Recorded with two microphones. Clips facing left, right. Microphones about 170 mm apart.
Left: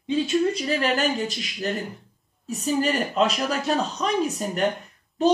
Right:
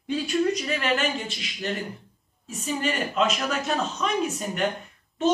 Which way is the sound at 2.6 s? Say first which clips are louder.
Left 4 dB; 35° left (ahead or behind).